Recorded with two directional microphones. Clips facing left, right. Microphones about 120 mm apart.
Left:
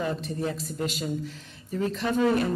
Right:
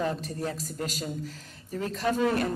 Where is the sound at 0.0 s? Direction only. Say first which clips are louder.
Left 1 dB; 40° right (ahead or behind).